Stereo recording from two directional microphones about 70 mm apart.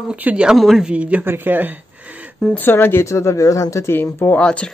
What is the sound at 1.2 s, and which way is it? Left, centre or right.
Speech, right.